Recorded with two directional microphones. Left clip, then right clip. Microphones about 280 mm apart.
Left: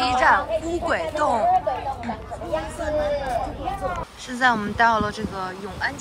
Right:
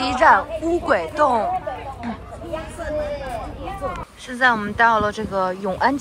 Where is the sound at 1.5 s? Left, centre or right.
Left.